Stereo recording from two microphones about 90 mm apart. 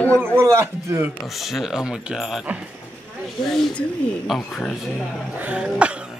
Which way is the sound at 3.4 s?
5° left (ahead or behind).